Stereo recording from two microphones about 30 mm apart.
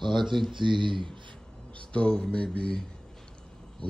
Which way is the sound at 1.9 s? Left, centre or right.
Left.